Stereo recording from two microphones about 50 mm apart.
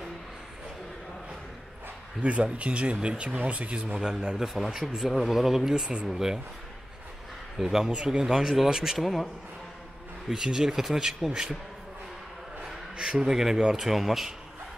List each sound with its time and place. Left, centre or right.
2.2 s speech: right; by 6.4 s centre
7.6 s a man's voice: centre
10.3 s speech: centre
12.9 s speech: centre